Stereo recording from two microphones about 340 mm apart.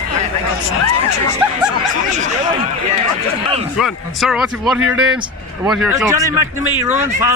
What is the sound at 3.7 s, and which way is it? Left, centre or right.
Speech, centre.